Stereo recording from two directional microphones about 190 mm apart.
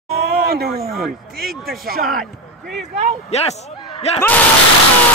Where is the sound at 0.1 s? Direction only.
55° right (ahead or behind).